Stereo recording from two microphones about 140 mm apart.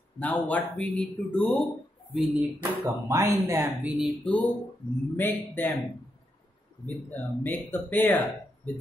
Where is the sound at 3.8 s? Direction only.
10° right (ahead or behind).